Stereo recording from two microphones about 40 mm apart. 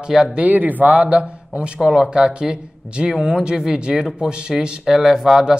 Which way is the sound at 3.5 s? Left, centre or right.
Centre.